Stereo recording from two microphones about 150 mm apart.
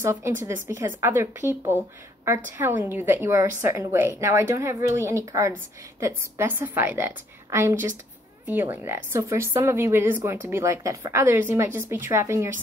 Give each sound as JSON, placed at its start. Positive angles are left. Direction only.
{"t": 0.0, "sound": "speech", "side_deg": -20}